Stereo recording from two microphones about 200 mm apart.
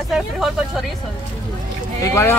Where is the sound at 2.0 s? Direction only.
10° left (ahead or behind).